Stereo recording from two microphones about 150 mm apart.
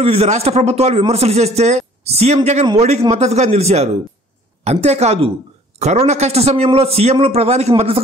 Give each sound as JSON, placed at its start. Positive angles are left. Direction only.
{"t": 0.0, "sound": "a man's voice", "side_deg": -40}